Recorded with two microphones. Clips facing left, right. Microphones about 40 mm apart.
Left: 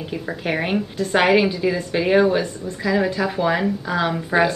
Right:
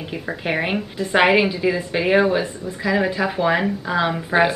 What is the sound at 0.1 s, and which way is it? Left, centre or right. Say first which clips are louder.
A woman's voice: right 1 dB; centre.